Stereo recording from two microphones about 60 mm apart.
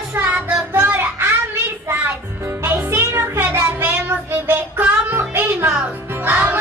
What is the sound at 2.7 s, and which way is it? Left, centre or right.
Music, right.